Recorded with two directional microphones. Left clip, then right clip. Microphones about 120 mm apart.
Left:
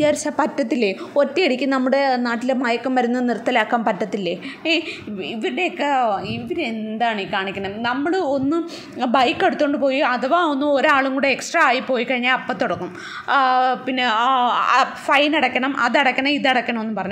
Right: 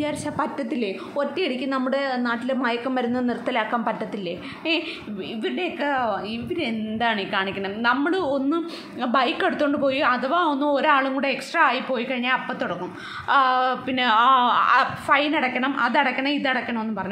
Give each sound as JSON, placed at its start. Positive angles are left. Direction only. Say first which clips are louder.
{"t": 0.0, "sound": "a woman's voice", "louder": "left 7 dB", "side_deg": 50}
{"t": 6.5, "sound": "a woman's voice", "louder": "left 2 dB", "side_deg": 15}
{"t": 9.0, "sound": "a woman's voice", "louder": "left 4 dB", "side_deg": 35}
{"t": 13.3, "sound": "speech", "louder": "left 3 dB", "side_deg": 30}
{"t": 14.6, "sound": "a woman's voice", "louder": "left 2 dB", "side_deg": 30}